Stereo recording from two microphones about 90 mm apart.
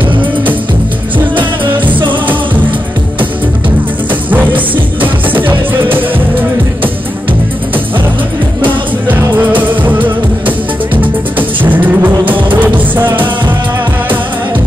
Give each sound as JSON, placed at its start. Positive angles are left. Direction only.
{"t": 4.1, "sound": "music", "side_deg": -20}
{"t": 8.6, "sound": "music", "side_deg": -20}